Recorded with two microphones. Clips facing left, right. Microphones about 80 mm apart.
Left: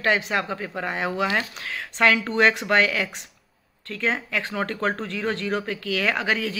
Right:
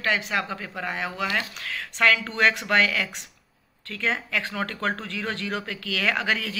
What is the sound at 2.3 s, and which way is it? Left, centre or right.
Speech, centre.